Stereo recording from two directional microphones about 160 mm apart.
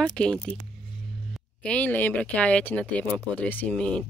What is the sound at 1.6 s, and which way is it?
Speech, 10° left (ahead or behind).